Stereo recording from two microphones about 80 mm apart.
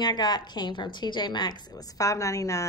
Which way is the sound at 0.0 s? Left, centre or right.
Left.